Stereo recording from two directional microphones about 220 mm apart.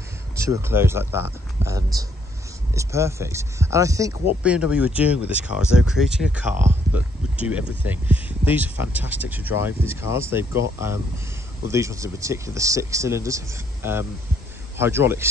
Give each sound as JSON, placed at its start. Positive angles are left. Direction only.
{"t": 0.4, "sound": "speech", "side_deg": -10}